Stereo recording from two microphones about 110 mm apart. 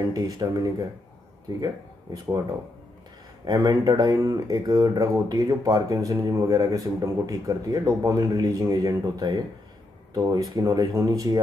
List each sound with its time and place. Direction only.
0.1 s speech: 30° right (ahead or behind)
2.1 s speech: 30° right (ahead or behind)
3.4 s speech: 35° right (ahead or behind)